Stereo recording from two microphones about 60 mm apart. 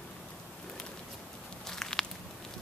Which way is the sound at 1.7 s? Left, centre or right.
Centre.